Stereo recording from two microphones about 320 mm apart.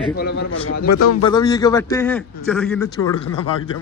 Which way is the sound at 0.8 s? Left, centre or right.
Left.